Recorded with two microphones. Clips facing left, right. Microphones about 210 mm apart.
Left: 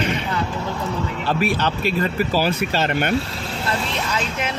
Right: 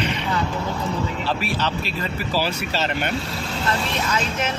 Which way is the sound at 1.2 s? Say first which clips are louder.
Left 4 dB; 50° left (ahead or behind).